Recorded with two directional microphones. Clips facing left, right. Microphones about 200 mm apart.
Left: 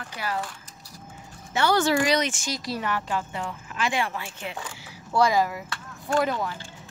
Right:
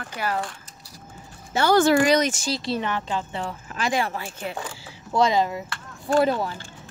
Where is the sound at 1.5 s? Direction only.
45° right (ahead or behind); by 3.4 s 20° right (ahead or behind).